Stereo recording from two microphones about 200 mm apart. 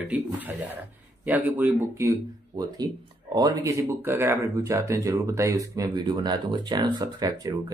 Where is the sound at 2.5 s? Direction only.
20° right (ahead or behind).